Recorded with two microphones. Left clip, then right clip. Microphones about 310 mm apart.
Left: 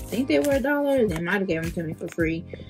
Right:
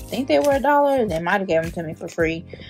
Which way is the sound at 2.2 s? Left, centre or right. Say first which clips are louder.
Right 5 dB; right.